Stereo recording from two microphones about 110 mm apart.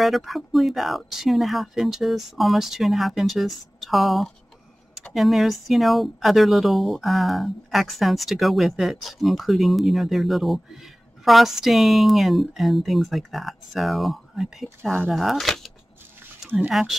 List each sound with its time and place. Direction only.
0.0 s speech: centre (ahead or behind)
16.4 s speech: 10° right (ahead or behind)